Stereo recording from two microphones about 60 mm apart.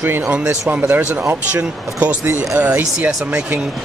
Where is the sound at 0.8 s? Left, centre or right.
Right.